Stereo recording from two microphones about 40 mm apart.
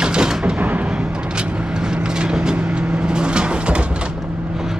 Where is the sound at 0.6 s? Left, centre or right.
Right.